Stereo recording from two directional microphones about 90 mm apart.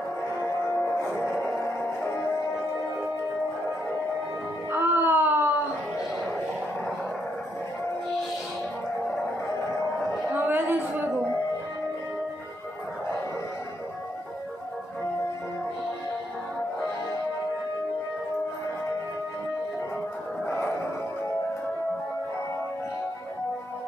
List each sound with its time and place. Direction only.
4.6 s wail: 25° right (ahead or behind)
10.3 s a sound: 20° right (ahead or behind)
20.4 s music: 25° left (ahead or behind)